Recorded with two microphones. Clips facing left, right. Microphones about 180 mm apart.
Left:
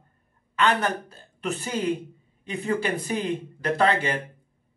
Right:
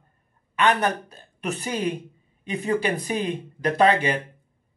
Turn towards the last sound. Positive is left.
turn(degrees=-15)  # may be behind; listen again after turning